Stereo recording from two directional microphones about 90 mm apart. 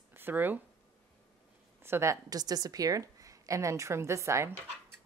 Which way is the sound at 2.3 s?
45° right (ahead or behind).